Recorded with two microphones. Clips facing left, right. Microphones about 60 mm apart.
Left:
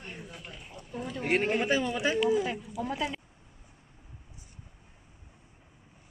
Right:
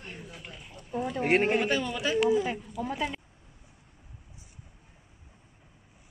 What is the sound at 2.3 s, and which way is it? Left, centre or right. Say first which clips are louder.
Speech: right 1 dB; centre.